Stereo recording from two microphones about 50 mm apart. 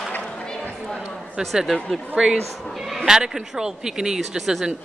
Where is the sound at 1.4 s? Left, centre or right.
Centre.